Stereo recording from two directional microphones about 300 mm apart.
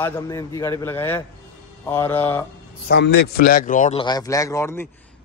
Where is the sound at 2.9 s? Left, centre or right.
Left; by 4.9 s centre.